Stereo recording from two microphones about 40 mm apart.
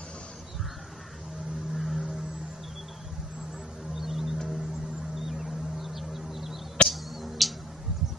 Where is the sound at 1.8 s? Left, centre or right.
Centre.